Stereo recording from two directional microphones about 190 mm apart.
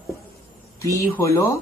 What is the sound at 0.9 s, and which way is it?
Music, 15° left (ahead or behind).